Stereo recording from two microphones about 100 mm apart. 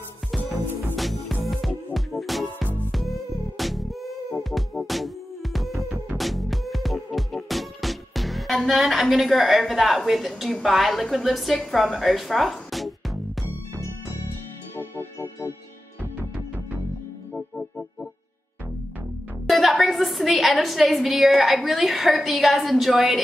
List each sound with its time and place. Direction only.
0.9 s music: centre (ahead or behind)
3.5 s music: centre (ahead or behind)
14.8 s music: 25° left (ahead or behind)
17.3 s music: 10° left (ahead or behind)
19.4 s a woman's voice: centre (ahead or behind)